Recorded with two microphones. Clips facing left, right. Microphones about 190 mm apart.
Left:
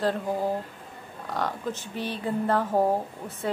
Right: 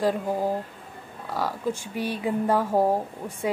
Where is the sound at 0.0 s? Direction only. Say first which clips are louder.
Right 2 dB; 10° right (ahead or behind).